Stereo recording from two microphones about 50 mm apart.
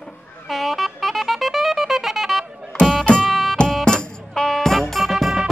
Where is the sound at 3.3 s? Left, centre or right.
Centre.